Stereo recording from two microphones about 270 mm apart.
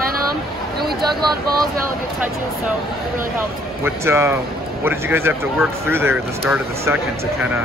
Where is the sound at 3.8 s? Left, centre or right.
Centre.